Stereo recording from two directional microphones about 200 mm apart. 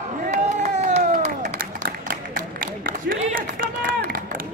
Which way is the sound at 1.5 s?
45° right (ahead or behind).